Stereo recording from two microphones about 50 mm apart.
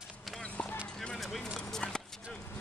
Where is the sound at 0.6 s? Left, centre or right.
Left.